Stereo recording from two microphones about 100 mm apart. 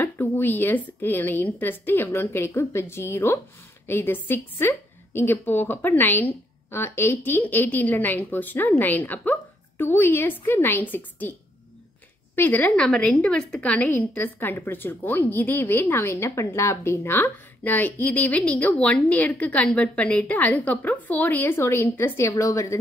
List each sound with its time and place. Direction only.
0.0 s a woman's voice: 20° left (ahead or behind)
12.4 s a woman's voice: 15° left (ahead or behind)